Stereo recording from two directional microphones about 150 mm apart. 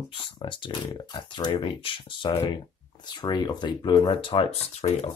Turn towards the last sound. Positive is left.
turn(degrees=45)  # may be behind; listen again after turning